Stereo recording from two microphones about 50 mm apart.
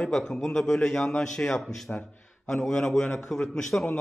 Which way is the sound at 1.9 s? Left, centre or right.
Left.